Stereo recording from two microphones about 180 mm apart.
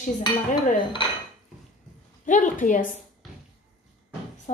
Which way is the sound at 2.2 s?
45° left (ahead or behind).